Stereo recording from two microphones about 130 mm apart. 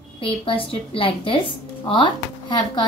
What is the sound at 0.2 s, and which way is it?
A woman's voice, 45° left (ahead or behind).